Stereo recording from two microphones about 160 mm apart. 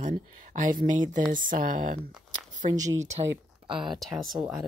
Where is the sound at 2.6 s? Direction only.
20° right (ahead or behind).